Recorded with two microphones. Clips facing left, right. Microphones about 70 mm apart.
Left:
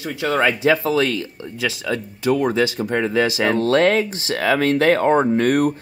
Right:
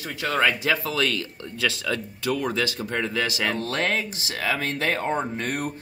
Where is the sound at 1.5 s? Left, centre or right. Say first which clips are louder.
Left 3 dB; centre.